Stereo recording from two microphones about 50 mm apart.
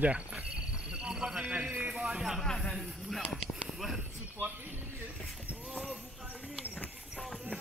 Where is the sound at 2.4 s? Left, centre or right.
Centre.